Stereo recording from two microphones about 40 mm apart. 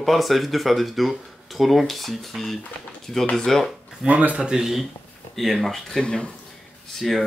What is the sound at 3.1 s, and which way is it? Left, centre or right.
Speech, centre.